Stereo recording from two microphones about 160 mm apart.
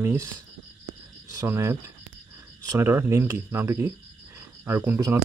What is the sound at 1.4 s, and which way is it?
Speech, 15° right (ahead or behind).